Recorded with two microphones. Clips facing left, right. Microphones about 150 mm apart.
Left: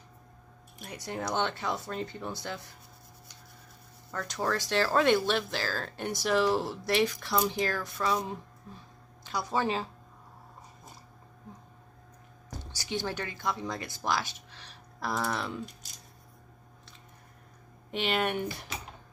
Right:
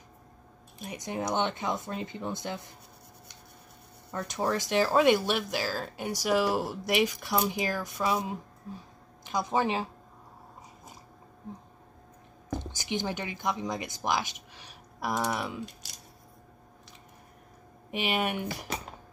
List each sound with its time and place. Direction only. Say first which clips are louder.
0.7 s speech: right 3 dB; 15° right (ahead or behind)
4.1 s speech: right 2 dB; 20° right (ahead or behind)
12.7 s speech: left 1 dB; 20° right (ahead or behind)
17.9 s speech: even; 10° right (ahead or behind)